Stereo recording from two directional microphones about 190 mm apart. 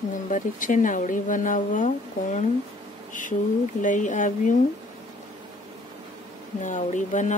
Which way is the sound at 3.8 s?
40° left (ahead or behind).